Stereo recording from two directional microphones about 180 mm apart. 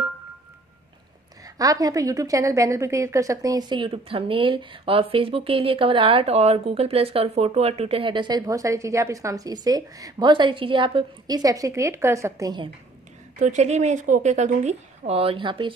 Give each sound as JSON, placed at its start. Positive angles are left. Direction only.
{"t": 1.4, "sound": "a woman's voice", "side_deg": -20}
{"t": 13.4, "sound": "a woman's voice", "side_deg": -40}